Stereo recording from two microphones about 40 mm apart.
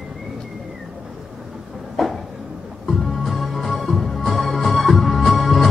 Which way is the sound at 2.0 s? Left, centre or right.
Centre.